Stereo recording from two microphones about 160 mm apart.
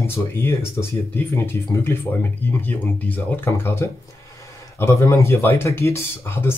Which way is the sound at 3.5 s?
15° left (ahead or behind).